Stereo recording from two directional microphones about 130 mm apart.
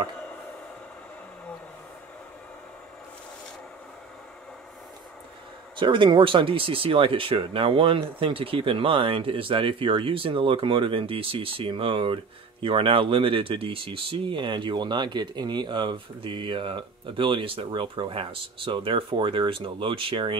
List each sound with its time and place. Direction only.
5.8 s speech: 40° right (ahead or behind)